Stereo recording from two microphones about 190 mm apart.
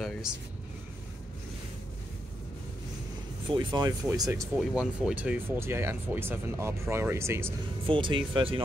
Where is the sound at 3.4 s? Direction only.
25° right (ahead or behind).